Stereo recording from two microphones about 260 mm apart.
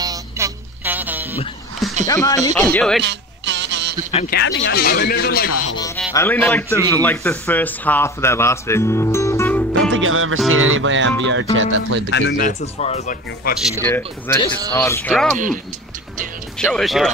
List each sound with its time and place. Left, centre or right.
0.0 s a sound: centre
2.0 s a man's voice: centre
3.0 s a sound: right
4.3 s speech: left
6.1 s a man's voice: centre
9.9 s music: right
12.1 s speech: left
13.8 s a man's voice: centre
15.3 s speech: right
16.5 s speech: centre